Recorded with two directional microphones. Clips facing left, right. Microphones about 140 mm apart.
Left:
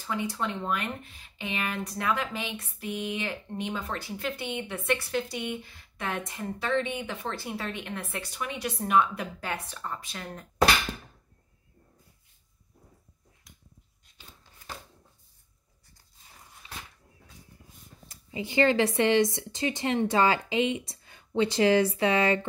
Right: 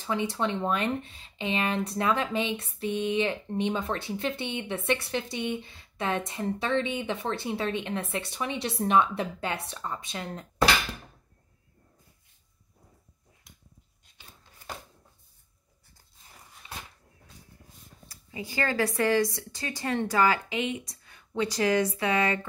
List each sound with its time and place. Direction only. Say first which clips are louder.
0.0 s speech: right 3 dB; 25° right (ahead or behind)
18.0 s speech: left 3 dB; 25° left (ahead or behind)